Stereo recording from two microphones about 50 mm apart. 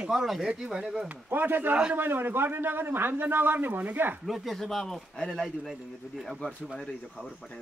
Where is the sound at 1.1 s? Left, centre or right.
Right.